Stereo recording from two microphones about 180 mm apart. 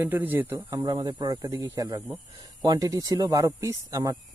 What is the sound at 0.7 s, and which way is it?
Speech, 25° right (ahead or behind).